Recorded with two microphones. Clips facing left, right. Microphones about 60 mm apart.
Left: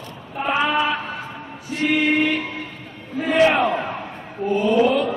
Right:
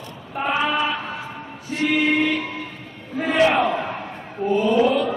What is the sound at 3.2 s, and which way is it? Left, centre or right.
Crowd, right.